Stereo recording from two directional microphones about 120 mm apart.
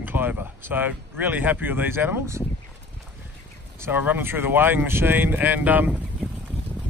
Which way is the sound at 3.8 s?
15° right (ahead or behind).